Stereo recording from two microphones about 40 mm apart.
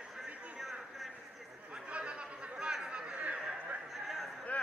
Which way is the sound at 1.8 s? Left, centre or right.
Right.